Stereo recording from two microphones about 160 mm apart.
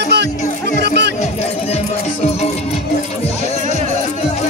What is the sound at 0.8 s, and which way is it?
Music, 90° right.